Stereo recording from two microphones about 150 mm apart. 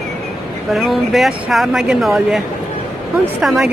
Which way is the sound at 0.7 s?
Centre (ahead or behind).